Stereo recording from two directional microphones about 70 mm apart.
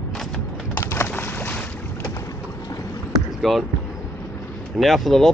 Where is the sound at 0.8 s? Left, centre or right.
Left.